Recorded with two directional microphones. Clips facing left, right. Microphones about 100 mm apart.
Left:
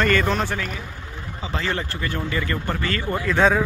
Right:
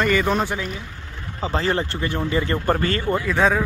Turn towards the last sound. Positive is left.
turn(degrees=0)  # may be behind; listen again after turning